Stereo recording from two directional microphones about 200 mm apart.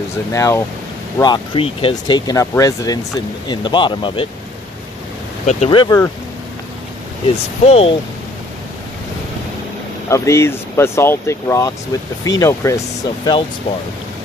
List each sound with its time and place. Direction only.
0.3 s speech: 15° left (ahead or behind)
5.5 s speech: 30° left (ahead or behind)
7.6 s speech: 30° left (ahead or behind)
10.0 s speech: 15° left (ahead or behind)
13.7 s speech: 30° left (ahead or behind)